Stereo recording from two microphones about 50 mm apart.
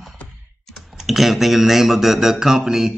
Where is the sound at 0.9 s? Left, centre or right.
Centre.